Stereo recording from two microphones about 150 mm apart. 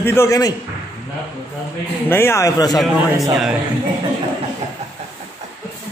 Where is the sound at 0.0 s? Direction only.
15° left (ahead or behind).